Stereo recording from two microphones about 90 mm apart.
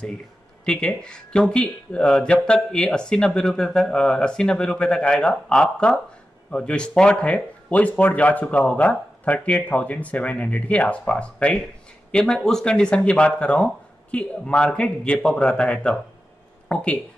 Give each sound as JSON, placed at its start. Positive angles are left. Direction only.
{"t": 0.7, "sound": "speech", "side_deg": 10}